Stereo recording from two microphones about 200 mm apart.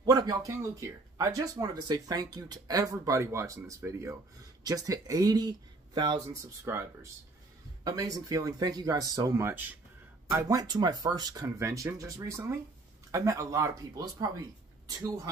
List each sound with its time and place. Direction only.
0.0 s speech: 20° right (ahead or behind)
6.6 s speech: 15° right (ahead or behind)